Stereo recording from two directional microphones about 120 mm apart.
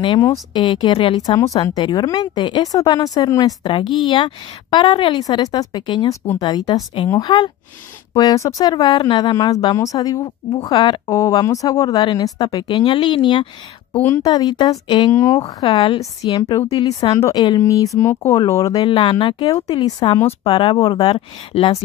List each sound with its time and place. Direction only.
0.5 s speech: 40° left (ahead or behind)
1.2 s speech: 30° left (ahead or behind)
13.9 s a woman's voice: 15° left (ahead or behind)
14.2 s speech: 35° left (ahead or behind)
15.1 s speech: 25° left (ahead or behind)
15.7 s speech: 45° left (ahead or behind); by 18.9 s 30° left (ahead or behind)
18.9 s speech: 45° left (ahead or behind)
19.5 s speech: 35° left (ahead or behind)
20.2 s speech: 45° left (ahead or behind)